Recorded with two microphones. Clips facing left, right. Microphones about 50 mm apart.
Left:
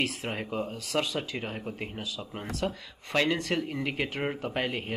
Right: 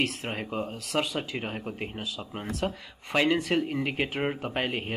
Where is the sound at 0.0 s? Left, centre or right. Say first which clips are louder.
Right 1 dB; centre.